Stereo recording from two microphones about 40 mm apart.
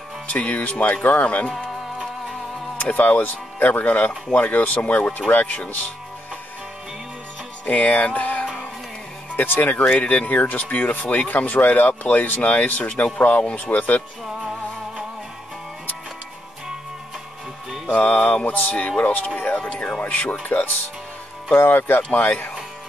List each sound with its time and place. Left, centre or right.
0.3 s speech: left
2.9 s speech: left
7.6 s music: left
9.4 s speech: left
9.9 s speech: left
17.8 s speech: left
18.4 s speech: left
21.6 s speech: left
22.1 s speech: left